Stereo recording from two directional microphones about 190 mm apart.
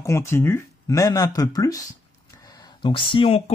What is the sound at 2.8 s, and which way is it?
Speech, 25° left (ahead or behind).